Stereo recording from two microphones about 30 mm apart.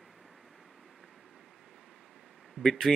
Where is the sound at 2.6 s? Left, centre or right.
Right.